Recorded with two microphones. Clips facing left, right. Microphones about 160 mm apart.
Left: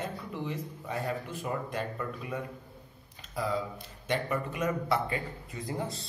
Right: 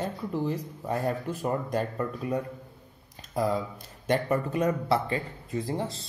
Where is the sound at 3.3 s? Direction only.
45° right (ahead or behind).